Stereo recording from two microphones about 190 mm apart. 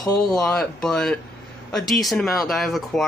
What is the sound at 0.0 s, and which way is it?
Speech, centre (ahead or behind).